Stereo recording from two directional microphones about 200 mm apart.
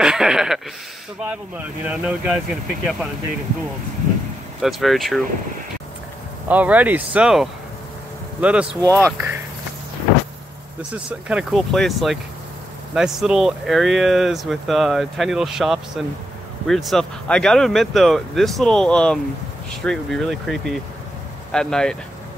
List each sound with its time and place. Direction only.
0.0 s speech: 5° right (ahead or behind)
1.9 s speech: 5° right (ahead or behind)
4.6 s speech: centre (ahead or behind)
6.5 s speech: 10° right (ahead or behind)
11.1 s speech: 5° right (ahead or behind)